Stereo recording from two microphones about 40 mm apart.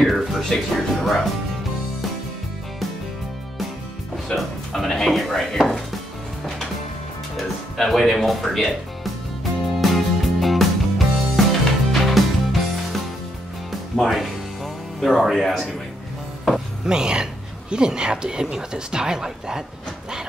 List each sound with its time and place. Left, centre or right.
0.0 s music: centre
0.7 s speech: centre
4.4 s speech: centre
7.3 s music: centre
14.0 s speech: centre
16.8 s speech: centre